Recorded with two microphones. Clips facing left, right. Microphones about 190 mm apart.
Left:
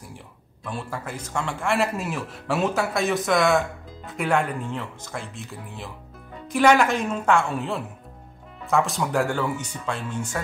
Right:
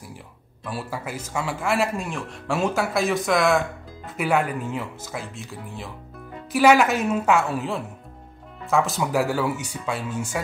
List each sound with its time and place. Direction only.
0.7 s a man's voice: 5° right (ahead or behind)